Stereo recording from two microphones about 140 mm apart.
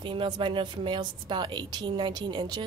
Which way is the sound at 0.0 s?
35° right (ahead or behind).